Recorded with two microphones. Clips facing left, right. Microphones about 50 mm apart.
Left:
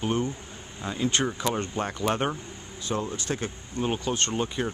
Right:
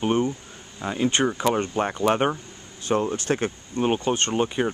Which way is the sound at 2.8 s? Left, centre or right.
Right.